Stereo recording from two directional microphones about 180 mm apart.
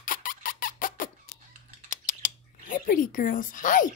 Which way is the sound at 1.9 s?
45° left (ahead or behind).